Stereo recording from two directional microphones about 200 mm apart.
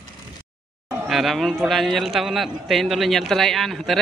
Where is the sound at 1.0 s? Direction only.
Centre (ahead or behind).